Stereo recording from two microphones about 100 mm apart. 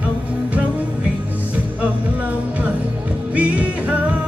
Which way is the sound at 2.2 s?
15° right (ahead or behind).